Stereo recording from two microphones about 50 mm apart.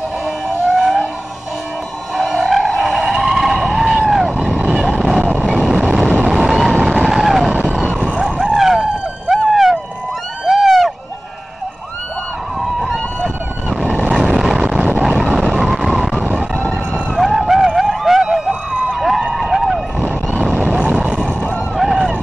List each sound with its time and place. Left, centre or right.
0.7 s a sound: centre
2.1 s vehicle: centre
6.0 s vehicle: right
6.3 s vehicle: centre
8.0 s vehicle: right
8.4 s vehicle: centre
9.5 s a sound: centre
12.6 s a sound: centre
13.7 s vehicle: centre
15.0 s vehicle: centre
16.3 s emergency vehicle: centre
17.2 s vehicle: centre
20.6 s vehicle: centre
21.7 s vehicle: centre